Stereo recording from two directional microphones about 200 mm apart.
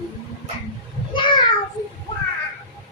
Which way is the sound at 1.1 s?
25° left (ahead or behind).